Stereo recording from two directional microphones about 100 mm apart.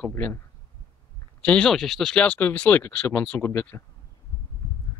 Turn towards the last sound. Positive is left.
turn(degrees=25)  # may be behind; listen again after turning